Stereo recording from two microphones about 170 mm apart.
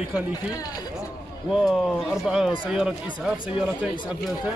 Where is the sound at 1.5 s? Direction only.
Centre (ahead or behind).